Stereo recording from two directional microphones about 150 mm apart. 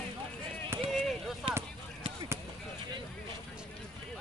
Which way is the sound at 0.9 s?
Centre (ahead or behind).